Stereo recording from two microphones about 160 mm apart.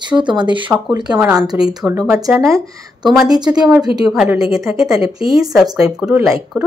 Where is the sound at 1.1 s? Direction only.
5° right (ahead or behind).